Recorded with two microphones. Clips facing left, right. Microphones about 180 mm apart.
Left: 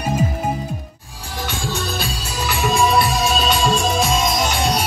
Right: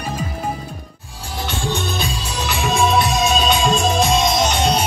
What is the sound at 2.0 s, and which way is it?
Music, 5° left (ahead or behind).